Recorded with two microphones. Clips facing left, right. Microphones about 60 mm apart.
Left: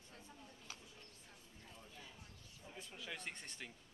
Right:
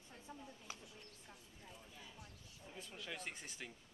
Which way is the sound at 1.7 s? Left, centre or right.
Centre.